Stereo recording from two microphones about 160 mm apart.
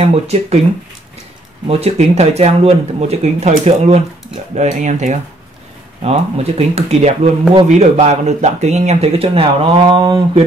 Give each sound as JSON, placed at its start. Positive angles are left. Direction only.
{"t": 0.0, "sound": "speech", "side_deg": -40}
{"t": 1.7, "sound": "speech", "side_deg": -40}